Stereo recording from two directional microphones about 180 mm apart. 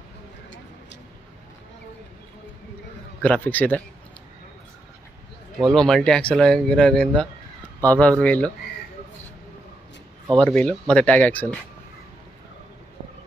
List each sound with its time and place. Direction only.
3.2 s speech: 10° left (ahead or behind)
5.6 s speech: 5° left (ahead or behind)
10.4 s speech: 5° left (ahead or behind)